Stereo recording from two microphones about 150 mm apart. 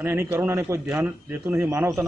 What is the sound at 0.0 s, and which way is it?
A man's voice, 15° right (ahead or behind).